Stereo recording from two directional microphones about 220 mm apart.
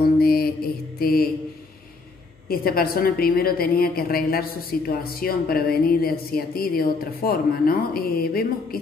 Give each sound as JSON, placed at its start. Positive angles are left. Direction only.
{"t": 0.0, "sound": "mantra", "side_deg": 45}
{"t": 0.9, "sound": "a woman's voice", "side_deg": 45}
{"t": 2.4, "sound": "a woman's voice", "side_deg": 40}